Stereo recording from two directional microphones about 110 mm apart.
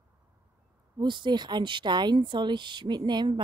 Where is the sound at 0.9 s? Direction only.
45° right (ahead or behind).